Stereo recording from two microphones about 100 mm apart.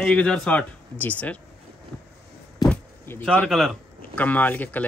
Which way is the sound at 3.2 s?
15° left (ahead or behind).